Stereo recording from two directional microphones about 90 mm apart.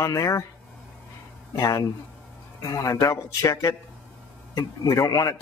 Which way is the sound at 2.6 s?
40° left (ahead or behind).